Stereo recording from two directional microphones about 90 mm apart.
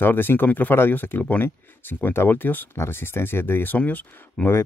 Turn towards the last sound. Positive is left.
turn(degrees=25)  # may be behind; listen again after turning